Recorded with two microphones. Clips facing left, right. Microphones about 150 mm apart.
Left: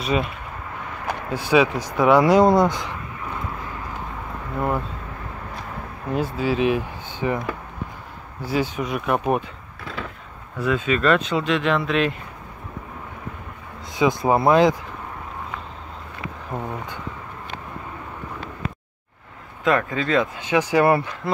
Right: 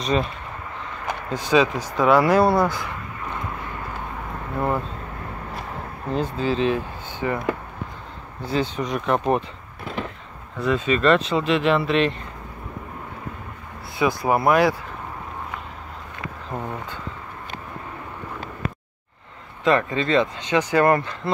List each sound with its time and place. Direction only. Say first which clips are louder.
0.0 s speech: even; 5° left (ahead or behind)
1.5 s speech: left 1 dB; 10° left (ahead or behind)
4.6 s speech: even; centre (ahead or behind)
6.0 s speech: left 1 dB; 10° left (ahead or behind)
8.5 s speech: even; 10° left (ahead or behind)
10.6 s speech: right 1 dB; centre (ahead or behind)
13.9 s speech: left 2 dB; 20° left (ahead or behind)
19.6 s speech: right 1 dB; centre (ahead or behind)